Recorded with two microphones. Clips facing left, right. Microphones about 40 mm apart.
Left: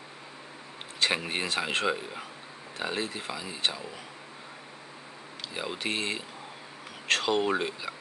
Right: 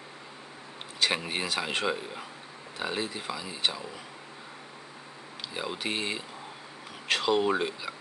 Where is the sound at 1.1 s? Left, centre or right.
Centre.